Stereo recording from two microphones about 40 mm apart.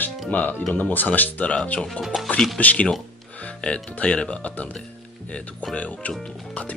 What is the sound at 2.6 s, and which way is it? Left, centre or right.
Speech, left.